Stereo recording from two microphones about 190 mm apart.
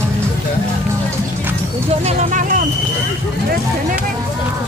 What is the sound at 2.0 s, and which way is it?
Vehicle, 40° right (ahead or behind).